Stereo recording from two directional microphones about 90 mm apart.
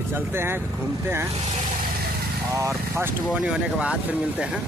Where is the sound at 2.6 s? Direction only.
30° right (ahead or behind).